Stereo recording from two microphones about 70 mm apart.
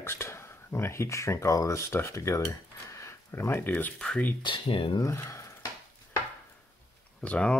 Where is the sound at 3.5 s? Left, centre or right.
Left.